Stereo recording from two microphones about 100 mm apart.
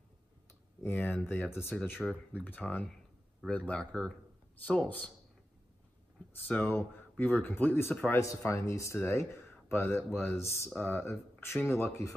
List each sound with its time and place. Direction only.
0.8 s speech: 20° left (ahead or behind)
2.0 s speech: centre (ahead or behind)
2.4 s speech: 15° left (ahead or behind)
6.4 s speech: 15° left (ahead or behind)